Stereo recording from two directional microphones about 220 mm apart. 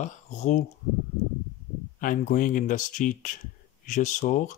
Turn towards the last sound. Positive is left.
turn(degrees=35)  # may be behind; listen again after turning